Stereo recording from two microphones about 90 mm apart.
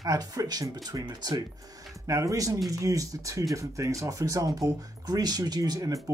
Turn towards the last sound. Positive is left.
turn(degrees=-45)  # may be behind; listen again after turning